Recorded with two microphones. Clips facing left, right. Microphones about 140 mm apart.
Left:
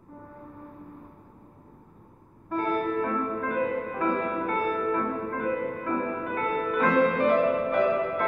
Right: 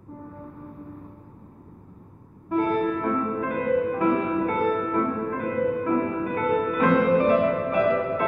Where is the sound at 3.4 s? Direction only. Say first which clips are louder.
Right 4 dB; 5° right (ahead or behind).